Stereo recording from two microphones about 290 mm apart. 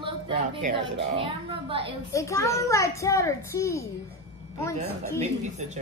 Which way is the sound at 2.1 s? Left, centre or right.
Centre.